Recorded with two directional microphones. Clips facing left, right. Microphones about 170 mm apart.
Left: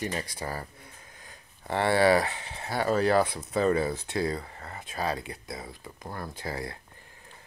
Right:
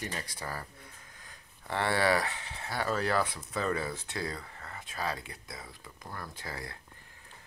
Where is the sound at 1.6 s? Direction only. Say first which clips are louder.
Left 6 dB; 25° left (ahead or behind).